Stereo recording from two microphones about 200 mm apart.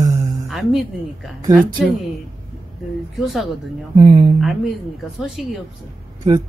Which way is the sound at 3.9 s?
25° right (ahead or behind).